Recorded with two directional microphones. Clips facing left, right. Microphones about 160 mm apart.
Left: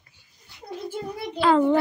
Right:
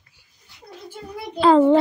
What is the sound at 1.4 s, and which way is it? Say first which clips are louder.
Speech: right 5 dB; 30° right (ahead or behind).